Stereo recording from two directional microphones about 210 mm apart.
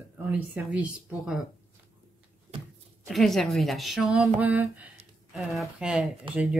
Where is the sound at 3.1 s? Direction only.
Centre (ahead or behind).